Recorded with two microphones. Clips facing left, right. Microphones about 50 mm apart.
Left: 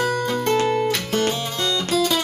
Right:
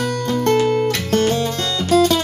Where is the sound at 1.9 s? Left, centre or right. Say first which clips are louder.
Right 8 dB; right.